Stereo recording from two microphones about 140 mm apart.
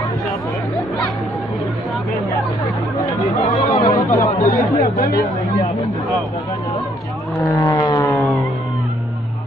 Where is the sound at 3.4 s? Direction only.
75° left (ahead or behind).